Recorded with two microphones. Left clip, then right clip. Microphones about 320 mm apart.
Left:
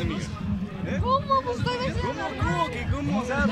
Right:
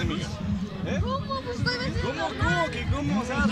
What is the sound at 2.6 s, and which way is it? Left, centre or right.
Speech, centre.